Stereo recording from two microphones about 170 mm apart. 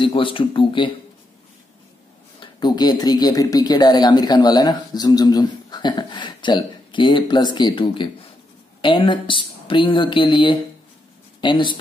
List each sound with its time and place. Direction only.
0.0 s speech: 30° left (ahead or behind)
2.4 s speech: 25° left (ahead or behind)